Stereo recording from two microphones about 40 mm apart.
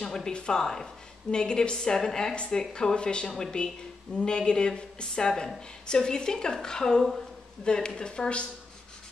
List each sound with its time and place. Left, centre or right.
0.0 s a woman's voice: centre